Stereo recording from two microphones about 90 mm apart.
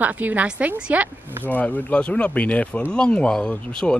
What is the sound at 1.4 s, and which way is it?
Speech, 20° left (ahead or behind).